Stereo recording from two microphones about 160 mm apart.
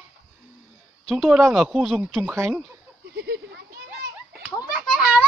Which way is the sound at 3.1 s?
90° right.